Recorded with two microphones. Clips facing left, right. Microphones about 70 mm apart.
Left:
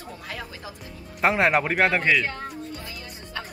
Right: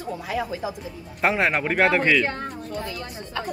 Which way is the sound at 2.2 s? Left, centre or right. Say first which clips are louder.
Right 3 dB; right.